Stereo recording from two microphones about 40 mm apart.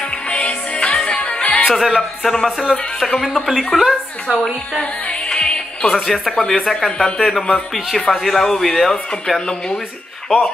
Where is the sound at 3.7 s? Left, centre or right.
Left.